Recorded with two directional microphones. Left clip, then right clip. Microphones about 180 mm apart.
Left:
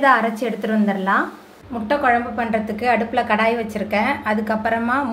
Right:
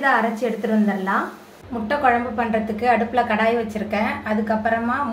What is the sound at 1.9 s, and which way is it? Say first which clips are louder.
A woman's voice: left 1 dB; 25° left (ahead or behind).